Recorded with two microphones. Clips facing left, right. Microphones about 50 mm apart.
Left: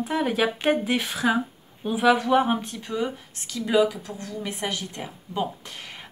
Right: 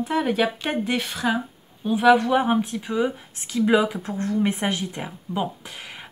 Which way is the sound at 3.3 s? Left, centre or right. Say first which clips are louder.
Right 2 dB; right.